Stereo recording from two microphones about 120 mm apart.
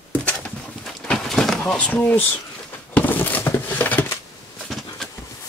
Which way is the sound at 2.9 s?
15° left (ahead or behind).